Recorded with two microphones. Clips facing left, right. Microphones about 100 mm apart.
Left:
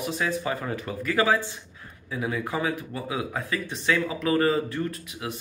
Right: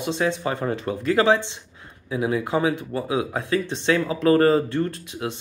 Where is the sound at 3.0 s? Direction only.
25° right (ahead or behind).